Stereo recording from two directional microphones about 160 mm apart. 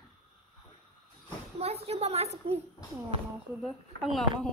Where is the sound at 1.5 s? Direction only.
40° right (ahead or behind).